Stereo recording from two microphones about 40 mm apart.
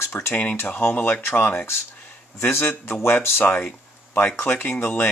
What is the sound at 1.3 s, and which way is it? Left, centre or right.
Speech, left.